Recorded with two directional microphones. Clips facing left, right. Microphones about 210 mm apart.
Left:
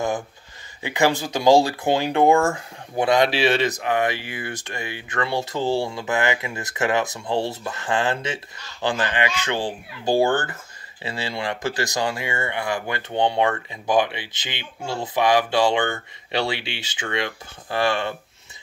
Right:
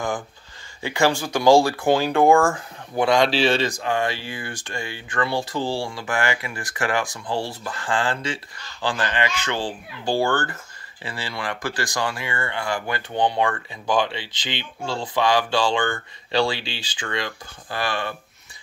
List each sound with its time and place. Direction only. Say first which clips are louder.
0.8 s speech: even; 15° left (ahead or behind)